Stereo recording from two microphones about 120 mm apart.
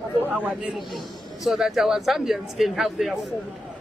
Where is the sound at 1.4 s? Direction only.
Centre (ahead or behind).